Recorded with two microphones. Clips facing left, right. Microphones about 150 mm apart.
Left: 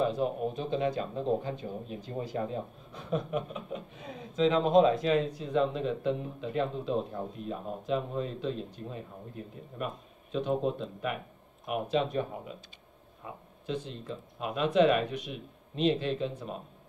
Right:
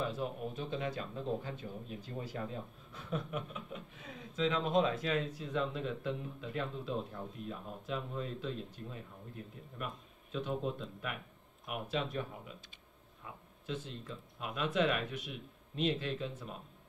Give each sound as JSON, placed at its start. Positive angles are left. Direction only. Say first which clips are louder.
{"t": 0.0, "sound": "speech", "louder": "left 8 dB", "side_deg": 30}
{"t": 13.8, "sound": "speech", "louder": "left 6 dB", "side_deg": 25}